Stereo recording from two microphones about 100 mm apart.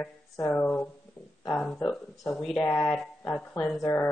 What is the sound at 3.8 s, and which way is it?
Speech, 35° left (ahead or behind).